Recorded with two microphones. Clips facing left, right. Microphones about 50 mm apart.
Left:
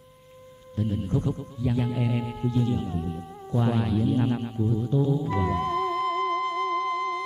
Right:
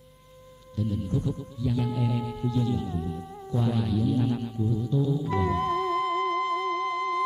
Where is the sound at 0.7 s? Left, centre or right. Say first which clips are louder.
Left 2 dB; left.